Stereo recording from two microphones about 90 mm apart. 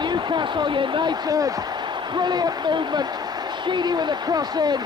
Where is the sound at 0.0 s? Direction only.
55° right (ahead or behind).